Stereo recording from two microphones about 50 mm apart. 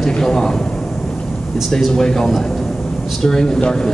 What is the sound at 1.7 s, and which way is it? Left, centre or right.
A man's voice, centre.